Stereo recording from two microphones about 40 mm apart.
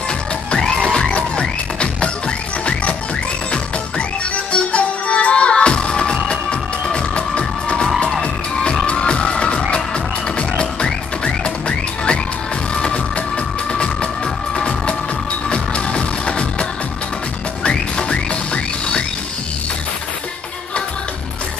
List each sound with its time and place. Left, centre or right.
0.6 s music: centre
4.5 s music: left
7.2 s music: left
8.9 s music: left
10.6 s music: left
17.6 s music: left